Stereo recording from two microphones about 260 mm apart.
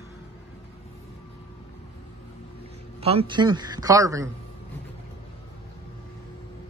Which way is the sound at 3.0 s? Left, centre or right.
Right.